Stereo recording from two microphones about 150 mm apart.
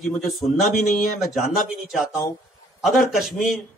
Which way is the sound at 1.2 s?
Centre (ahead or behind).